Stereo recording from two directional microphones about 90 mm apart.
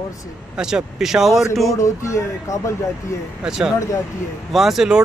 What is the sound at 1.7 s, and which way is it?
Speech, 35° left (ahead or behind).